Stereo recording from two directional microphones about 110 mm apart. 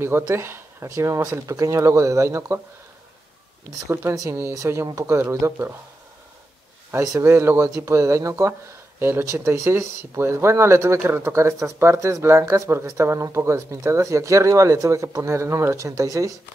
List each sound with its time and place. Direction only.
0.0 s speech: 20° right (ahead or behind)
3.8 s speech: 25° right (ahead or behind)
7.0 s speech: 30° right (ahead or behind)